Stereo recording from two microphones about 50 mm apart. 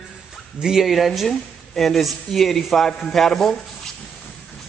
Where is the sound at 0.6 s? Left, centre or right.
Centre.